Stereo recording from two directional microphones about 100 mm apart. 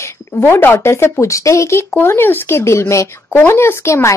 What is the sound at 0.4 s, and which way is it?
Speech, 20° left (ahead or behind).